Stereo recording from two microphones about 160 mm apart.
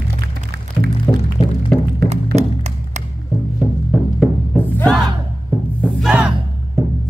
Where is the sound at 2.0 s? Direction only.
45° right (ahead or behind).